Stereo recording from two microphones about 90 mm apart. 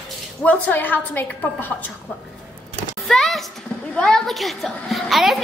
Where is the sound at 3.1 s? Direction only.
Centre (ahead or behind).